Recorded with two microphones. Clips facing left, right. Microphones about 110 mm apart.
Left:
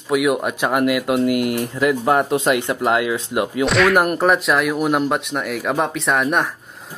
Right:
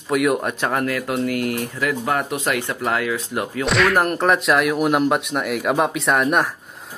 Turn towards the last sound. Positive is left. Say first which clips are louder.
# even
turn(degrees=0)  # may be behind; listen again after turning